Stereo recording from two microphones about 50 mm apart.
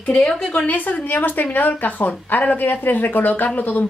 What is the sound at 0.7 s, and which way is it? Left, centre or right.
Speech, left.